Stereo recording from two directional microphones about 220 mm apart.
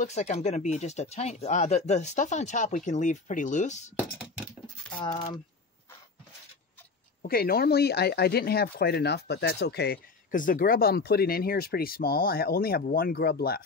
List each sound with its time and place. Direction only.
0.0 s speech: 30° left (ahead or behind)
5.0 s speech: 20° left (ahead or behind)
7.2 s speech: 45° left (ahead or behind)